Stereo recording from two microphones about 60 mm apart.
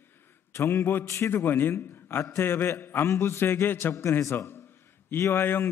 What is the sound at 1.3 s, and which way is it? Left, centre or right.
Speech, left.